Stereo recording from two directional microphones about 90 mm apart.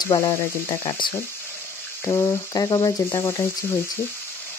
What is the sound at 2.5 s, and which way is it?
Speech, 40° left (ahead or behind).